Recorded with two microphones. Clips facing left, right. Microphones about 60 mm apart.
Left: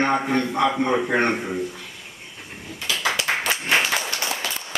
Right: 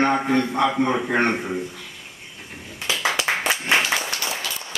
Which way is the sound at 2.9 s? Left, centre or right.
Right.